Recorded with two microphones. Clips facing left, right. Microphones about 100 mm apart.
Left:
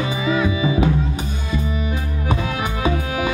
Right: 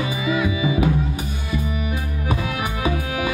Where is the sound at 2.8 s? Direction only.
25° left (ahead or behind).